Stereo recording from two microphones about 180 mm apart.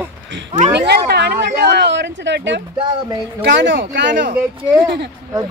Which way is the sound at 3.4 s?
80° right.